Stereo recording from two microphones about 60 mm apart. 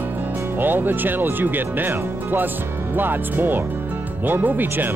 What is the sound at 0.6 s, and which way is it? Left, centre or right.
Speech, right.